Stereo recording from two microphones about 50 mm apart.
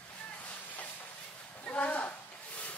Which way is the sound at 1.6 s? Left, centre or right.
Left.